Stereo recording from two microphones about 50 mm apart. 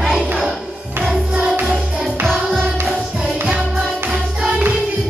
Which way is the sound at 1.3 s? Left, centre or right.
Right.